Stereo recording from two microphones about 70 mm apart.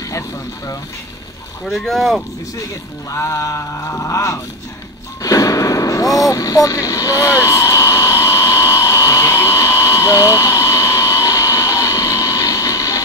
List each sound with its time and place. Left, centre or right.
1.7 s speech: centre
3.1 s a sound: left
5.2 s artillery fire: left